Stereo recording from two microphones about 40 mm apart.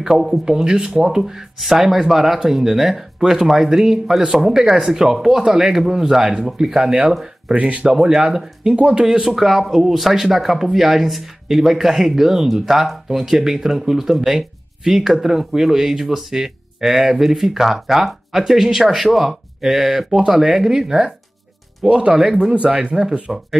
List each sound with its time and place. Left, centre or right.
0.0 s speech: centre
7.5 s speech: right
8.0 s speech: centre
8.7 s speech: right
9.3 s speech: centre; by 22.2 s right
22.2 s speech: centre
22.5 s speech: right
23.3 s speech: centre